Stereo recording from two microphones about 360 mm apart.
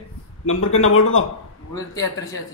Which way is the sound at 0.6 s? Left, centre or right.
Left.